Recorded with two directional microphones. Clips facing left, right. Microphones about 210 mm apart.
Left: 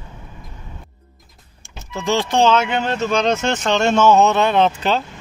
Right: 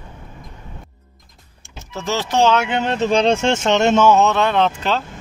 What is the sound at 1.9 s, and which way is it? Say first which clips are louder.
Speech: left 2 dB; 5° right (ahead or behind).